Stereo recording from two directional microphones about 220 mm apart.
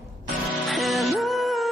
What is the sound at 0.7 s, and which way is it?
Music, centre (ahead or behind).